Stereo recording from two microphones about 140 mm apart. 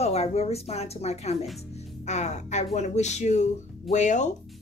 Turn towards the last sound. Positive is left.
turn(degrees=60)  # may be behind; listen again after turning